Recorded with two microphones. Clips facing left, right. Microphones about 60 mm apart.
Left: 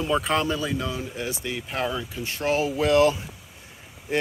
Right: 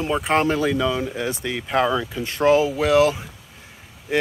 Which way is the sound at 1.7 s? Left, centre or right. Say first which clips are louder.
Right 9 dB; right.